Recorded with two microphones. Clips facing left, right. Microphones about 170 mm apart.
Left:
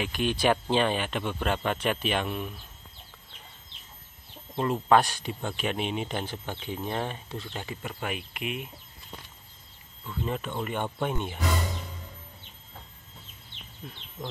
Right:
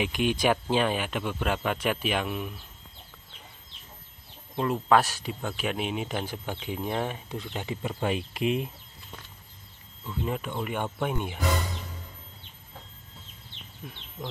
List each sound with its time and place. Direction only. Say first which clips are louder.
0.0 s speech: right 1 dB; 15° right (ahead or behind)
4.6 s speech: even; centre (ahead or behind); by 8.6 s 30° right (ahead or behind)
10.0 s speech: right 1 dB; 10° right (ahead or behind)